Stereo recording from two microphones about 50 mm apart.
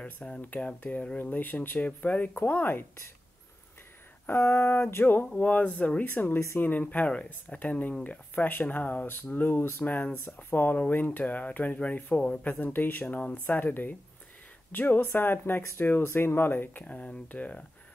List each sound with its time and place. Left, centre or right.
0.0 s speech: left
1.9 s speech: left
2.3 s speech: left
4.3 s a sound: left
5.3 s speech: left
6.0 s speech: left
12.5 s speech: left
15.1 s a sound: left
16.8 s speech: left